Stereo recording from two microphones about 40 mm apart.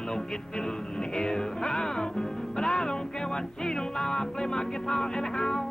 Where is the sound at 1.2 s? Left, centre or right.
Centre.